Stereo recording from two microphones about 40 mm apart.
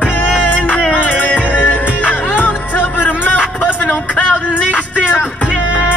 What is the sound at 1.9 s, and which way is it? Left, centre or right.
Music, left.